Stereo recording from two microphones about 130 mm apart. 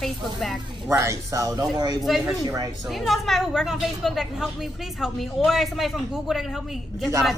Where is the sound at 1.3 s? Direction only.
25° right (ahead or behind).